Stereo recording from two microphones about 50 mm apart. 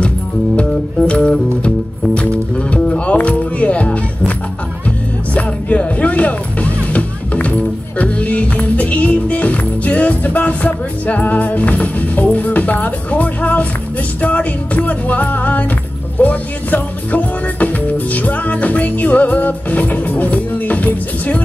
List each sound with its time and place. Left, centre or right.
1.0 s music: left
5.3 s music: left